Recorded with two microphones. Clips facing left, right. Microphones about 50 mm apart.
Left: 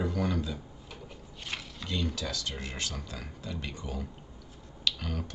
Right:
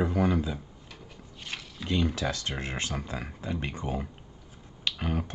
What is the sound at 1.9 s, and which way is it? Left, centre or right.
Speech, right.